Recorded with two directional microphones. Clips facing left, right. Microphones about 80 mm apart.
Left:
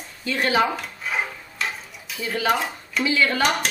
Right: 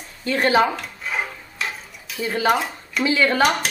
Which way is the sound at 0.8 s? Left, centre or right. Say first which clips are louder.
Even; centre.